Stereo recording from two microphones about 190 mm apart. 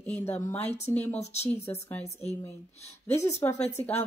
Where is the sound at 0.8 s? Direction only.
10° left (ahead or behind).